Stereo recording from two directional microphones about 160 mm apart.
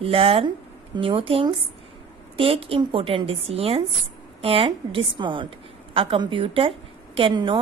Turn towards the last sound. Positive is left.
turn(degrees=-30)  # may be behind; listen again after turning